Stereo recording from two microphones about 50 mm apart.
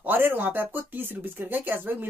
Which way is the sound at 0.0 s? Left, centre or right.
Right.